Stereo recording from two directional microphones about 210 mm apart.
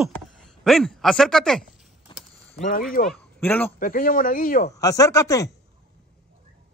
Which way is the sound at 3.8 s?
40° left (ahead or behind).